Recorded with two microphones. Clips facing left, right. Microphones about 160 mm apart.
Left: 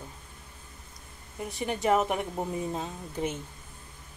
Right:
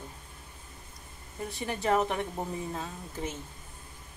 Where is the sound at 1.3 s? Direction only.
15° left (ahead or behind).